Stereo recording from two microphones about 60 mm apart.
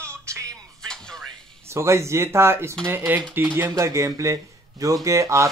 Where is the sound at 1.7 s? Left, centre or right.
Right.